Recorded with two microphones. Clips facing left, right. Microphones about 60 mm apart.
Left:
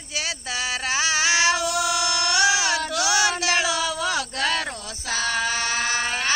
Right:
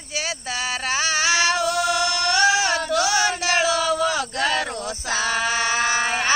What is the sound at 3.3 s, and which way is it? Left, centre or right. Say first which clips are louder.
Music: right 2 dB; centre.